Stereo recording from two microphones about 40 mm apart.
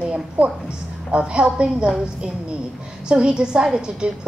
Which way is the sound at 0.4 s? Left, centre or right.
Right.